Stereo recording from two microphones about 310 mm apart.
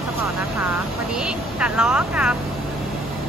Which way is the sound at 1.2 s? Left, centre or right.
Centre.